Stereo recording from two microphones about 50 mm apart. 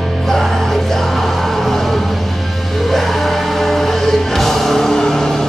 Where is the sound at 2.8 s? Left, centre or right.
Centre.